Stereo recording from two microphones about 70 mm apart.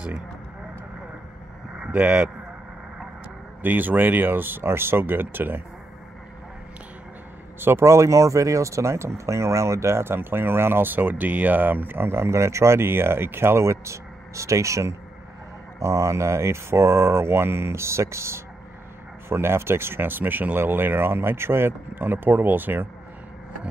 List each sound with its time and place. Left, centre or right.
1.8 s speech: right
3.6 s speech: right
7.6 s speech: right